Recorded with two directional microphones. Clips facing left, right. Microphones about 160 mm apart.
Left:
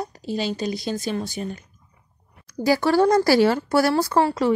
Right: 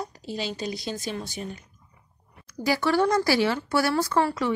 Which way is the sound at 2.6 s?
40° left (ahead or behind).